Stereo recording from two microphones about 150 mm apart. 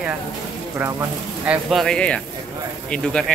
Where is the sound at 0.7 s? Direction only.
15° right (ahead or behind).